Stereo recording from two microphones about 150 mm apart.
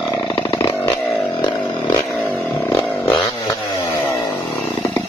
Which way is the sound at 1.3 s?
30° left (ahead or behind).